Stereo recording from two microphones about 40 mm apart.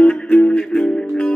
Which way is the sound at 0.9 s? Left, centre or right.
Left.